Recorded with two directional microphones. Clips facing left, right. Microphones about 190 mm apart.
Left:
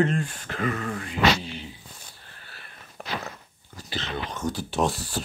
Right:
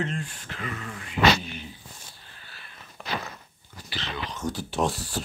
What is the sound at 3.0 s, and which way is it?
Walk, 45° left (ahead or behind).